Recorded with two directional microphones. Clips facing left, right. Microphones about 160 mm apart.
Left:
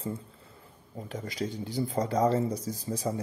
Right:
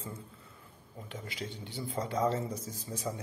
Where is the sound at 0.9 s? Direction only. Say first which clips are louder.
Left 7 dB; 40° left (ahead or behind).